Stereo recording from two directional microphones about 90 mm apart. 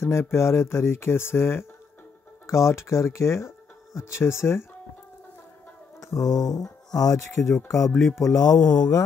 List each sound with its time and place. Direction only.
0.0 s speech: 30° left (ahead or behind)
5.9 s speech: 40° left (ahead or behind)
7.4 s speech: 30° left (ahead or behind)
8.2 s mantra: 40° left (ahead or behind)